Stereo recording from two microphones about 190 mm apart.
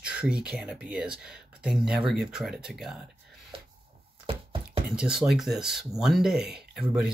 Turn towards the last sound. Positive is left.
turn(degrees=-5)  # may be behind; listen again after turning